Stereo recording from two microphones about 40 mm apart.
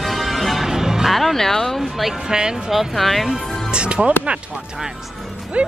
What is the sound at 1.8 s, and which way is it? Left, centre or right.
Speech, centre.